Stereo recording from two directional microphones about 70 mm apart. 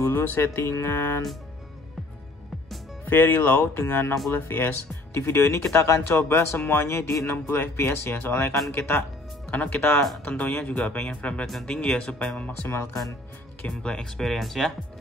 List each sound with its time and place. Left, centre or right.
0.1 s speech: left
3.1 s speech: left
9.5 s speech: left
9.9 s speech: centre
10.2 s speech: left
13.7 s speech: centre